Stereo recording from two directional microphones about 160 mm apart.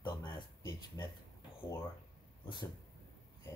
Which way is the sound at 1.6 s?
15° left (ahead or behind).